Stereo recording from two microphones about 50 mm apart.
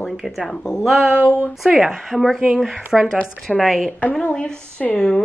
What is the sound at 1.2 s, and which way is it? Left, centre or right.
Speech, left.